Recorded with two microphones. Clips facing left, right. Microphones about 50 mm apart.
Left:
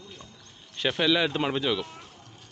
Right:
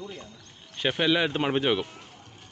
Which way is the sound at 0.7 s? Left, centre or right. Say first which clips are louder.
Even; centre.